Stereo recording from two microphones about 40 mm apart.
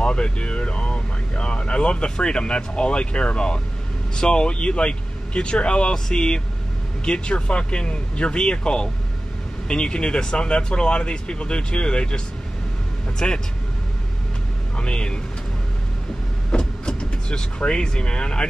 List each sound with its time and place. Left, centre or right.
0.0 s speech: left
13.2 s speech: left
14.8 s speech: left
16.5 s speech: left